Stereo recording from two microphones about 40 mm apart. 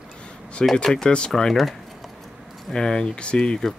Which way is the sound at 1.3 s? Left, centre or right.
Centre.